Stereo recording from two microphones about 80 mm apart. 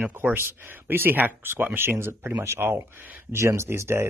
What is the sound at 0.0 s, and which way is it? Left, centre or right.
Speech, right.